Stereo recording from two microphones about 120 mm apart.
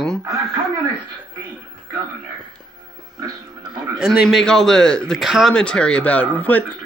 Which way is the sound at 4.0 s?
5° right (ahead or behind).